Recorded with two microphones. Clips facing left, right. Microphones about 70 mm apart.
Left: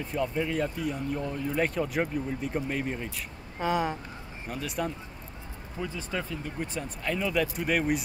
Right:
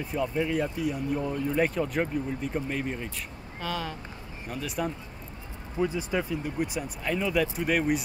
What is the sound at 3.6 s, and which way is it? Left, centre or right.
Speech, left.